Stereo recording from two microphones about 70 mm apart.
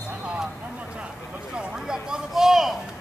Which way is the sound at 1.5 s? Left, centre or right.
Centre.